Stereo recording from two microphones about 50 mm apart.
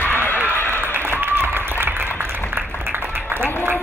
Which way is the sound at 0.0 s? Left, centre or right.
Left.